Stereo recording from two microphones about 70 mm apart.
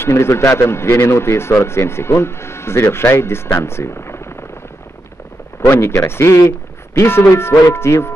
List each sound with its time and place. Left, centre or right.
0.0 s a man's voice: left
3.5 s a sound: left
5.7 s a man's voice: left